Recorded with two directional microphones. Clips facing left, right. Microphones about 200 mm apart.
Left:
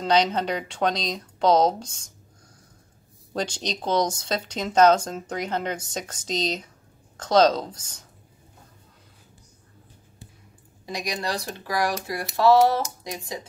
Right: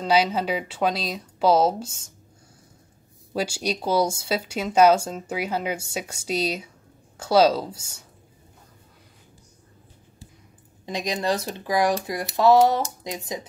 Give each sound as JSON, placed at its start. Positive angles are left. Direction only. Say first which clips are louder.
{"t": 0.0, "sound": "speech", "louder": "even", "side_deg": -5}
{"t": 3.3, "sound": "speech", "louder": "right 3 dB", "side_deg": -10}
{"t": 10.9, "sound": "speech", "louder": "right 4 dB", "side_deg": -20}